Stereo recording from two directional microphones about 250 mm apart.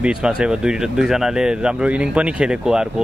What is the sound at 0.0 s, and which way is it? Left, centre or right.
Speech, centre.